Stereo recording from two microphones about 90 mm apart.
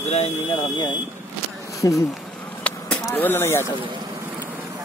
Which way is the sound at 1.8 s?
35° left (ahead or behind).